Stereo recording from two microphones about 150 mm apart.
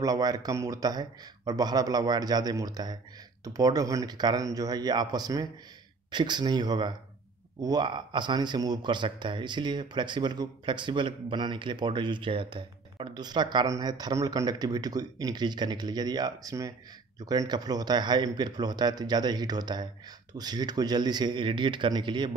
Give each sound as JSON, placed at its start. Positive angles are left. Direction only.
{"t": 0.0, "sound": "speech", "side_deg": -25}